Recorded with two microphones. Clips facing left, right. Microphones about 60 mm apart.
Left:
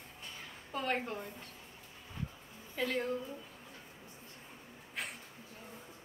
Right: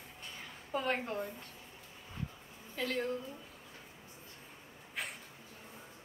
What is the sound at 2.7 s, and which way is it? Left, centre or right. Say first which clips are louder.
Speech: left 1 dB; centre.